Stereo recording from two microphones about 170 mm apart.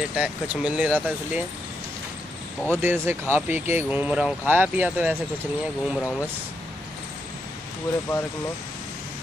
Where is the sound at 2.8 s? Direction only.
10° right (ahead or behind).